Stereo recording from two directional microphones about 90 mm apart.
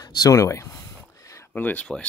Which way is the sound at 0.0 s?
45° left (ahead or behind).